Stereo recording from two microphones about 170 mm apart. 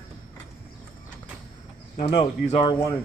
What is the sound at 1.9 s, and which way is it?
Speech, 35° left (ahead or behind).